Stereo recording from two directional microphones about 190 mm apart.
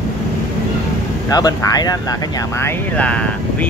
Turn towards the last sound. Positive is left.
turn(degrees=5)  # may be behind; listen again after turning